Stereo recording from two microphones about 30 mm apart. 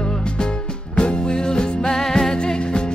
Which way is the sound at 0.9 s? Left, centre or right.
Left.